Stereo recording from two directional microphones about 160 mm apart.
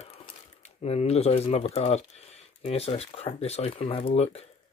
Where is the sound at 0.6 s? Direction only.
40° left (ahead or behind).